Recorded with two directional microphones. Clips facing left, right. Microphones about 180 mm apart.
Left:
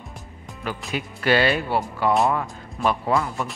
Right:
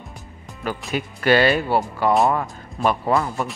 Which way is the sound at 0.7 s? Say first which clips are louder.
Right 3 dB; 45° right (ahead or behind).